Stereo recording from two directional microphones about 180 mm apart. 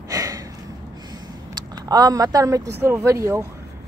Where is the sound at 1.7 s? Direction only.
20° right (ahead or behind).